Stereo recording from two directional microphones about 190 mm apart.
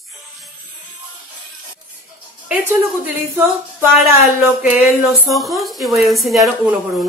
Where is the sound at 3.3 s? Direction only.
10° right (ahead or behind).